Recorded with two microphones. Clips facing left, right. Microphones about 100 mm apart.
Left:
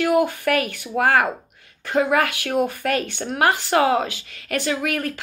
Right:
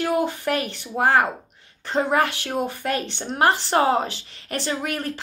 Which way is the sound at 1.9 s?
30° right (ahead or behind).